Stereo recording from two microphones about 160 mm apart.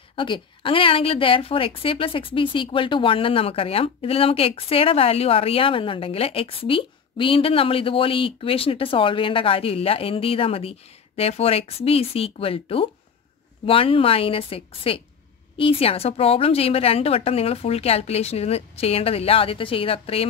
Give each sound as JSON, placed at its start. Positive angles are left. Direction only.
{"t": 0.1, "sound": "a woman's voice", "side_deg": 30}